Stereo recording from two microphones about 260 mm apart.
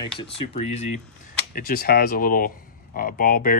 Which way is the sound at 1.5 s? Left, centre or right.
Left.